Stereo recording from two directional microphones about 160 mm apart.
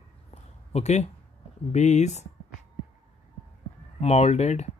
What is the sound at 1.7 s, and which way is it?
Speech, 45° left (ahead or behind).